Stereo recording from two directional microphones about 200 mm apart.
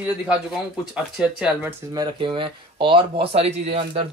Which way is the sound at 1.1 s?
5° right (ahead or behind).